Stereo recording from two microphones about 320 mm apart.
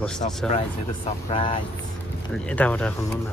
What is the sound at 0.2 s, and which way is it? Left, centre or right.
A man's voice, centre.